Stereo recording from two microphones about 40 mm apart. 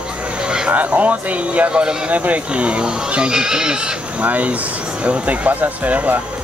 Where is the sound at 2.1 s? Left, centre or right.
Right; by 3.7 s centre.